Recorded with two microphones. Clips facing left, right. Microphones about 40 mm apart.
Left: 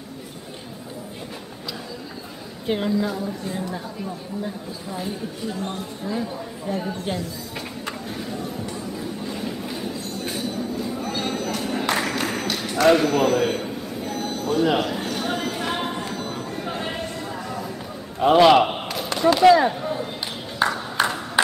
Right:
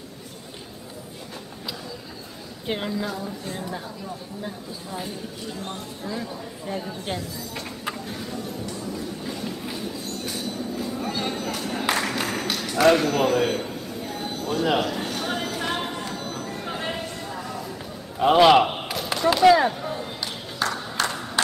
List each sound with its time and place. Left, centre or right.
2.6 s a woman's voice: centre
4.9 s a woman's voice: centre
6.7 s a woman's voice: centre
7.1 s a sound: centre
18.2 s a sound: centre
19.1 s chop: centre
20.6 s ping: centre
21.0 s crowd: centre